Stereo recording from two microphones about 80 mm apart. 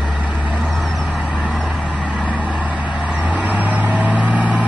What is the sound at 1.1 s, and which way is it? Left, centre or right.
Vehicle, centre.